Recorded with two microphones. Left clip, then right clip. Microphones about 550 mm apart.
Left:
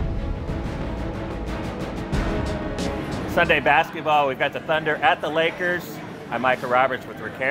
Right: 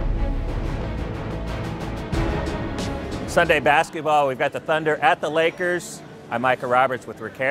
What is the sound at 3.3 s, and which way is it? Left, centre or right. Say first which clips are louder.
Speech: right 1 dB; right.